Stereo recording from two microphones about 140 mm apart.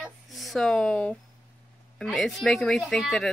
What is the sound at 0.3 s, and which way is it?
Speech, centre (ahead or behind).